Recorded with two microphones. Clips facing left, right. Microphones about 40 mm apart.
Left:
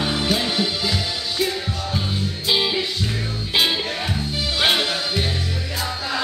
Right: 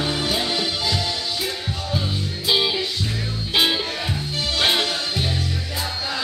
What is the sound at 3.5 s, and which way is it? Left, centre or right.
Music, centre.